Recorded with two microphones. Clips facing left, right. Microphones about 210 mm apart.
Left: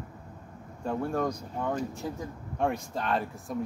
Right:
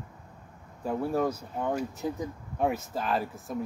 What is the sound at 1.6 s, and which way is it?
Speech, 15° right (ahead or behind).